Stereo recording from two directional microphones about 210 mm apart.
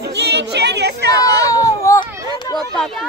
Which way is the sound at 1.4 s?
15° left (ahead or behind).